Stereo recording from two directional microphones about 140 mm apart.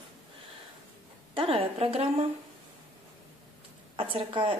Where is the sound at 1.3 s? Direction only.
40° right (ahead or behind).